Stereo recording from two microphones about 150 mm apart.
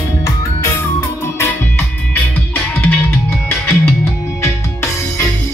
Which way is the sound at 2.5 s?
15° left (ahead or behind).